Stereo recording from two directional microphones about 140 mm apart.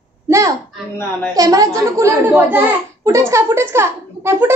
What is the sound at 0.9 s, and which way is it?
Speech, 10° left (ahead or behind).